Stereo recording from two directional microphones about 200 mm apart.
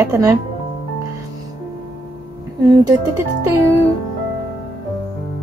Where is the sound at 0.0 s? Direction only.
15° right (ahead or behind).